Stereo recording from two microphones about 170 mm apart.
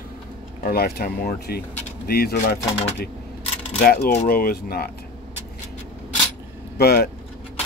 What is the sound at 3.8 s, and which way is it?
Speech, 65° left (ahead or behind).